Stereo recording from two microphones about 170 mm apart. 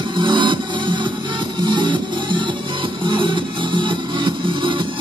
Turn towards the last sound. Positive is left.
turn(degrees=-30)  # may be behind; listen again after turning